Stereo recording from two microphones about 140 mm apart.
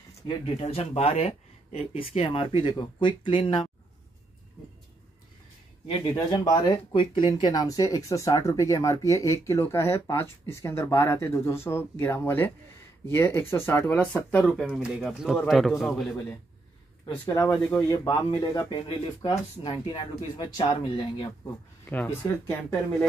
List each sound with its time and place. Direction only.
0.6 s speech: 45° left (ahead or behind)
5.9 s speech: 35° left (ahead or behind); by 14.7 s 10° left (ahead or behind)
14.7 s speech: 5° right (ahead or behind)
17.0 s speech: 25° left (ahead or behind)
21.8 s speech: 15° left (ahead or behind)